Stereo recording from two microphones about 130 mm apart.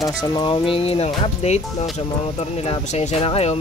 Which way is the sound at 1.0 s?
60° left (ahead or behind).